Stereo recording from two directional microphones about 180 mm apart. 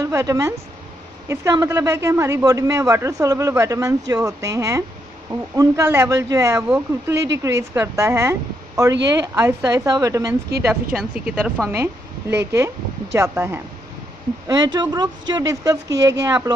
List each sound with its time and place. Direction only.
0.0 s a man's voice: 20° right (ahead or behind)